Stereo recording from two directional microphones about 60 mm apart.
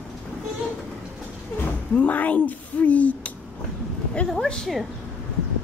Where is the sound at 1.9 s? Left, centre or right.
Left.